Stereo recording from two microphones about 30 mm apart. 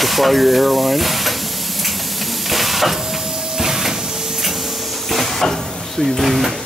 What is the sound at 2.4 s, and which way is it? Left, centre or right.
Hiss, centre.